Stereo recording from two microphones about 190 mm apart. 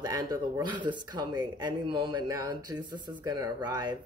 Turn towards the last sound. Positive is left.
turn(degrees=-20)  # may be behind; listen again after turning